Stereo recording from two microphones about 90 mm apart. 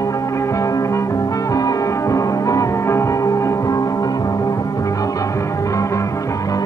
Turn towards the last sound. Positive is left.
turn(degrees=40)  # may be behind; listen again after turning